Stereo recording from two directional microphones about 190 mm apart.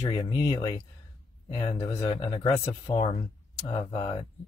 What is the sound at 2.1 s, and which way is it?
Speech, 30° left (ahead or behind).